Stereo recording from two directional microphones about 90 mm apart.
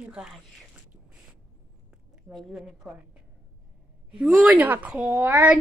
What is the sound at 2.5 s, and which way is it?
Speech, 5° right (ahead or behind).